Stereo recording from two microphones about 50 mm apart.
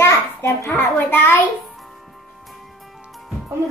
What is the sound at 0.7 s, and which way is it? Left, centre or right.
Speech, left.